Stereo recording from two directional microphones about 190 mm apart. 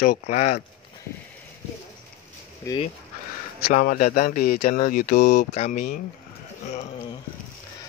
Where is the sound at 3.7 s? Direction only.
45° left (ahead or behind).